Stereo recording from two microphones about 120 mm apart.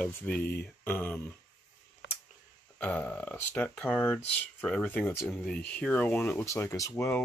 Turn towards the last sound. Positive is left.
turn(degrees=25)  # may be behind; listen again after turning